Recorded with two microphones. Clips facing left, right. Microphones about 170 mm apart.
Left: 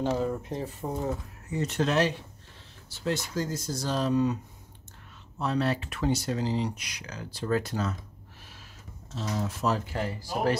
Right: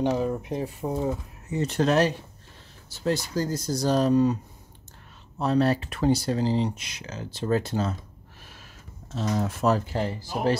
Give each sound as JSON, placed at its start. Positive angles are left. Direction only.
{"t": 0.0, "sound": "speech", "side_deg": -15}
{"t": 1.5, "sound": "speech", "side_deg": -30}
{"t": 5.4, "sound": "speech", "side_deg": -40}
{"t": 9.1, "sound": "speech", "side_deg": -60}
{"t": 9.8, "sound": "speech", "side_deg": -30}